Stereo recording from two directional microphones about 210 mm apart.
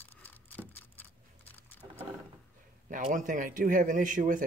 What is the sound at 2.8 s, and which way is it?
Speech, 40° right (ahead or behind).